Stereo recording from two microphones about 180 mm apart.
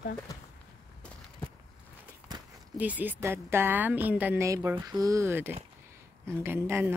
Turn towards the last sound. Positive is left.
turn(degrees=-10)  # may be behind; listen again after turning